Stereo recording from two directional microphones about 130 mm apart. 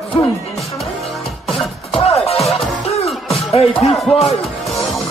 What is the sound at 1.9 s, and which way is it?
Music, 50° left (ahead or behind).